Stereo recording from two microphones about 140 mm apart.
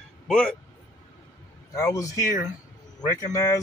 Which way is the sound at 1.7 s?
25° left (ahead or behind).